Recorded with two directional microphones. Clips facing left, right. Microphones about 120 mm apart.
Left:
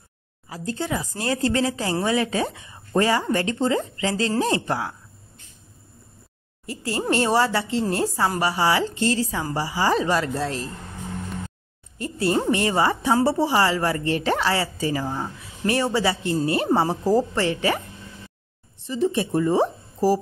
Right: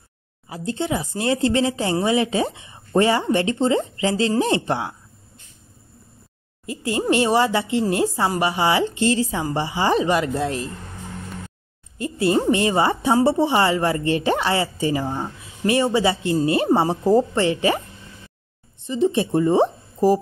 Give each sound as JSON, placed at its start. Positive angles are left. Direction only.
{"t": 0.5, "sound": "speech", "side_deg": -20}
{"t": 6.6, "sound": "speech", "side_deg": -20}
{"t": 12.0, "sound": "speech", "side_deg": -20}